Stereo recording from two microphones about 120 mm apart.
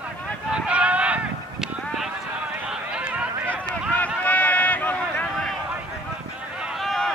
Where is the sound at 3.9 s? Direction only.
15° left (ahead or behind).